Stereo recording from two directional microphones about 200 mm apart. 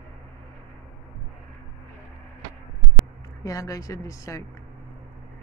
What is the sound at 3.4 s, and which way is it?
Speech, 15° left (ahead or behind).